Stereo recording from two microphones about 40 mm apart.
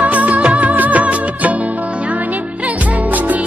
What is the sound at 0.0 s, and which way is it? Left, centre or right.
Music, right.